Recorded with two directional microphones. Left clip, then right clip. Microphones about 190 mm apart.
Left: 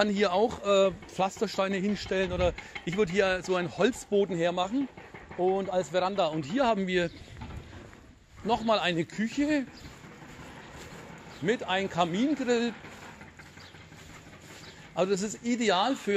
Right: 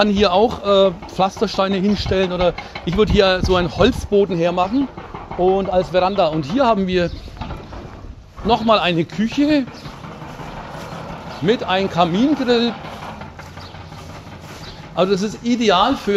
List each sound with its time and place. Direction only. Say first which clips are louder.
0.0 s speech: right 11 dB; 35° left (ahead or behind)
8.5 s speech: right 11 dB; 30° left (ahead or behind)
11.4 s speech: right 11 dB; 30° left (ahead or behind)
15.0 s speech: right 11 dB; 35° left (ahead or behind)